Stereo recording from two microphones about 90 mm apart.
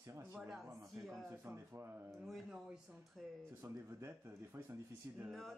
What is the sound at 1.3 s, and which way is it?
Speech, 25° right (ahead or behind).